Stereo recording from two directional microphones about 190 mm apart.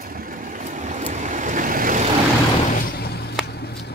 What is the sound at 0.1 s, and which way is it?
Vehicle, 45° right (ahead or behind).